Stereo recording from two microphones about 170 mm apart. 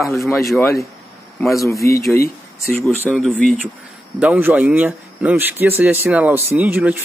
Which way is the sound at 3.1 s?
Centre (ahead or behind).